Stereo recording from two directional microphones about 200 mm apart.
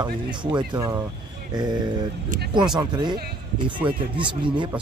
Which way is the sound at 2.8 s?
20° right (ahead or behind).